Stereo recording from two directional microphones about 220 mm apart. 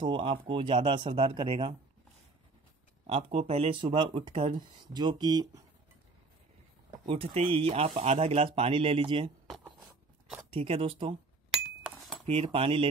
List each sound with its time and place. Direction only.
0.0 s speech: 25° right (ahead or behind)
3.1 s speech: 25° right (ahead or behind)
7.1 s speech: 25° right (ahead or behind)
10.5 s speech: 25° right (ahead or behind)
11.5 s chink: centre (ahead or behind)
12.3 s speech: 25° right (ahead or behind)